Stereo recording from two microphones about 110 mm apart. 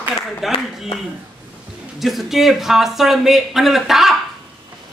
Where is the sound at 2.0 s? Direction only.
Centre (ahead or behind).